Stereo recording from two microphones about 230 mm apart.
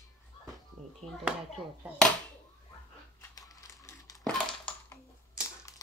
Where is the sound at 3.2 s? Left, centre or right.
Centre.